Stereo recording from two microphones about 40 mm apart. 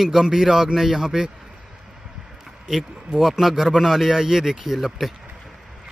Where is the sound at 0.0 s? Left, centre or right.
Centre.